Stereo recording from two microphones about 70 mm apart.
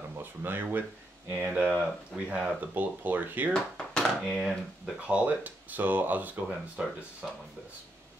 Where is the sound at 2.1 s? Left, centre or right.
Centre.